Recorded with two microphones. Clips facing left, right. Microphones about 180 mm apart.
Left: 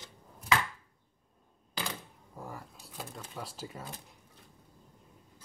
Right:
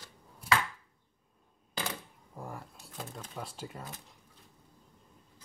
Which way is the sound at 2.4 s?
Centre (ahead or behind).